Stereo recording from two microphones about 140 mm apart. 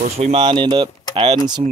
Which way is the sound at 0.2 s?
40° right (ahead or behind).